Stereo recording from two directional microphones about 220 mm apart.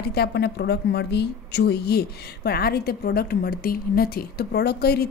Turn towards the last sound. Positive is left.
turn(degrees=45)  # may be behind; listen again after turning